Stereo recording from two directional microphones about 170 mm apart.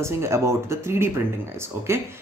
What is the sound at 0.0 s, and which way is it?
Speech, 15° right (ahead or behind).